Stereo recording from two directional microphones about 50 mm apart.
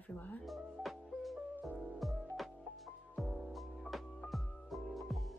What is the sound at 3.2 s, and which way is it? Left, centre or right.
Music, centre.